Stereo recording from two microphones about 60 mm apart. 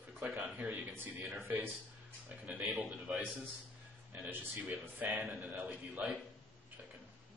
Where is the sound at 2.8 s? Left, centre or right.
Centre.